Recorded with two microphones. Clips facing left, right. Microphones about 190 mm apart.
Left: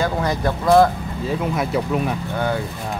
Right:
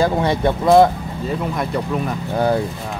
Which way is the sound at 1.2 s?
Centre (ahead or behind).